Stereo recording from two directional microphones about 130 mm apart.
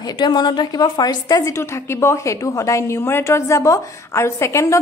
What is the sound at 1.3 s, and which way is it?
A woman's voice, 20° left (ahead or behind).